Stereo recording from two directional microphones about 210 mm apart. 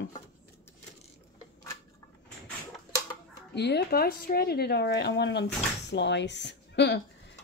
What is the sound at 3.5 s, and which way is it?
Speech, 55° left (ahead or behind).